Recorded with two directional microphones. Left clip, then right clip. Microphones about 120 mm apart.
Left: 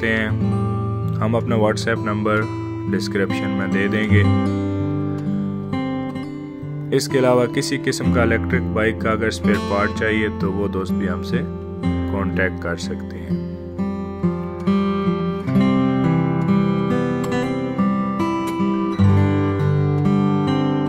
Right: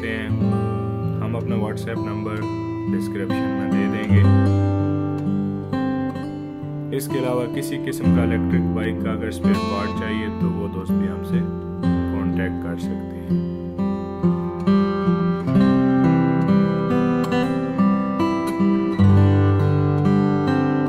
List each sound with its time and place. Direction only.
0.0 s music: 60° left (ahead or behind)
0.4 s music: centre (ahead or behind)
1.2 s speech: 55° left (ahead or behind)
3.6 s speech: 65° left (ahead or behind)
4.2 s music: centre (ahead or behind)
6.9 s speech: 55° left (ahead or behind)
13.3 s music: centre (ahead or behind)